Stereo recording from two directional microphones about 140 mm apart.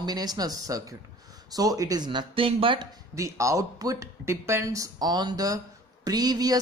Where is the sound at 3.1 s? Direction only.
20° right (ahead or behind).